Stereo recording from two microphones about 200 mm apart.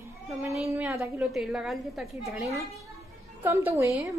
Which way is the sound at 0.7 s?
15° right (ahead or behind).